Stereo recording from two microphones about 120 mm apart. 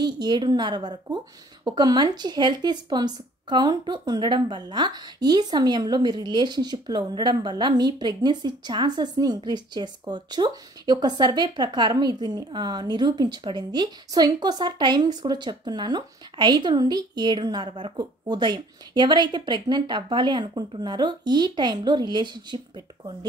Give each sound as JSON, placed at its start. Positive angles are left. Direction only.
{"t": 0.0, "sound": "a woman's voice", "side_deg": -40}